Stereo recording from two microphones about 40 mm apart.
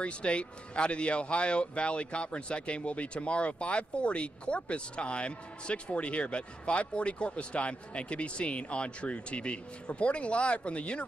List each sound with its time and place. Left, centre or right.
0.0 s speech: left